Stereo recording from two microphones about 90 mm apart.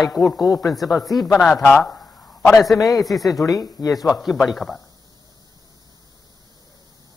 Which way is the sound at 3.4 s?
40° left (ahead or behind).